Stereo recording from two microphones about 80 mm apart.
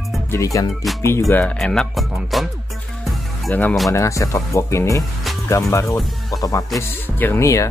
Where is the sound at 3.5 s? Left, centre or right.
Left.